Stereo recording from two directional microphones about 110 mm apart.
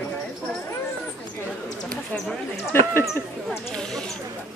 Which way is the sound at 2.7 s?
20° left (ahead or behind).